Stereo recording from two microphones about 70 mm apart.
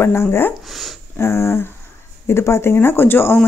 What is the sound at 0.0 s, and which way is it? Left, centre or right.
Speech, left.